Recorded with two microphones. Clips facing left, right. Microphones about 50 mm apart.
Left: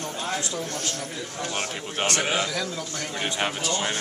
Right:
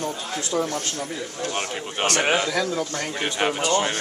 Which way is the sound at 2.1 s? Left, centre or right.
Right.